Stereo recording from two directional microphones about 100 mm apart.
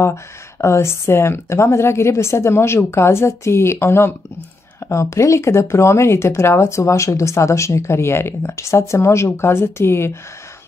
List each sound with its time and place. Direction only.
0.0 s speech: 30° left (ahead or behind)